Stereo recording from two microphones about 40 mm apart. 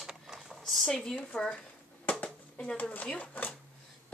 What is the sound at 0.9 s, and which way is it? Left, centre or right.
Speech, centre.